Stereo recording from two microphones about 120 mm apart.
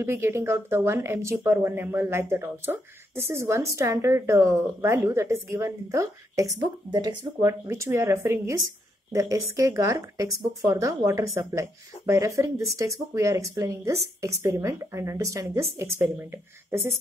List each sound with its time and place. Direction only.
0.0 s speech: 20° right (ahead or behind); by 7.4 s 35° right (ahead or behind)
7.4 s speech: 25° right (ahead or behind)